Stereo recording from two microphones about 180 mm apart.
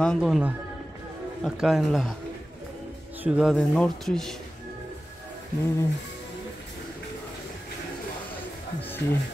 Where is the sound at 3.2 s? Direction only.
Centre (ahead or behind).